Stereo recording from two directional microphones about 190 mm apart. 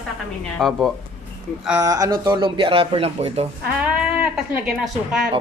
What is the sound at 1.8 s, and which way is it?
Speech, 20° right (ahead or behind).